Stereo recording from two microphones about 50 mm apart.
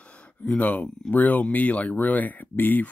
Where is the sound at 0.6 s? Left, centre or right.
Left.